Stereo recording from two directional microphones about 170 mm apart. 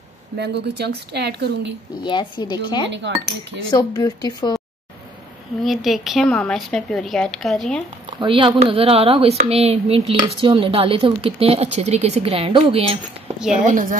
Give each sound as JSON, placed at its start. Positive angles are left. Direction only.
{"t": 0.4, "sound": "a woman's voice", "side_deg": -80}
{"t": 2.0, "sound": "a woman's voice", "side_deg": 30}
{"t": 5.6, "sound": "speech", "side_deg": 0}
{"t": 8.2, "sound": "speech", "side_deg": -30}
{"t": 13.4, "sound": "speech", "side_deg": -5}
{"t": 13.7, "sound": "a woman's voice", "side_deg": -50}